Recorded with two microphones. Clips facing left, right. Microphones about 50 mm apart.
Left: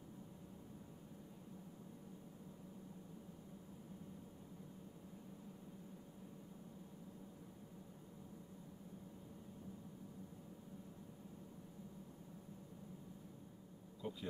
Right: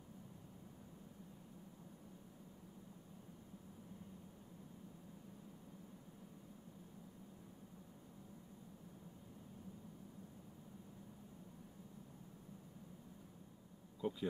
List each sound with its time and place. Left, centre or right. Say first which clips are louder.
14.0 s insect: right 5 dB; centre